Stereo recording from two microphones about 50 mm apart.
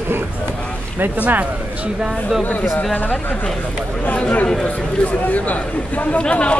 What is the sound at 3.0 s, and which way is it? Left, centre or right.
Speech, left.